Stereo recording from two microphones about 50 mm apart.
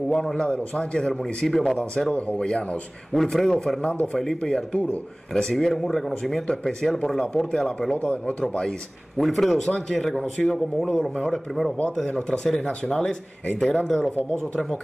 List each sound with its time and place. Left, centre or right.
0.1 s speech: centre
2.1 s speech: left
3.1 s speech: centre
3.8 s speech: left; by 6.4 s centre
6.4 s speech: centre
6.8 s speech: centre
7.9 s speech: left
9.2 s speech: centre
9.7 s speech: centre
12.1 s speech: centre